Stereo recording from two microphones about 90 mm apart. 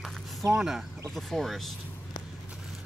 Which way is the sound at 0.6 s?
5° right (ahead or behind).